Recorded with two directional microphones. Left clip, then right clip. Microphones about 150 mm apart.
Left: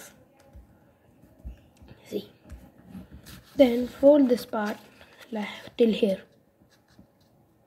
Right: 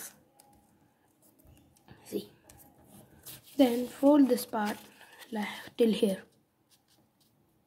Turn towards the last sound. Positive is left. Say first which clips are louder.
# left 4 dB
turn(degrees=-10)  # may be behind; listen again after turning